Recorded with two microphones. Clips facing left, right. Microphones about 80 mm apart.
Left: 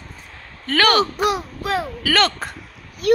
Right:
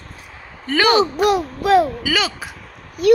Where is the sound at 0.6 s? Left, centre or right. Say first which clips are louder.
Right 2 dB; centre.